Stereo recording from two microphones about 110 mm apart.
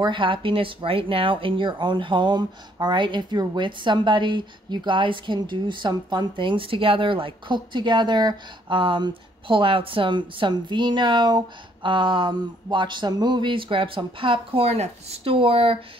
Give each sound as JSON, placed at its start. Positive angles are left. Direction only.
{"t": 0.0, "sound": "speech", "side_deg": -50}